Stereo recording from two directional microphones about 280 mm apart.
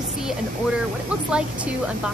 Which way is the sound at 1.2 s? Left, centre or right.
Centre.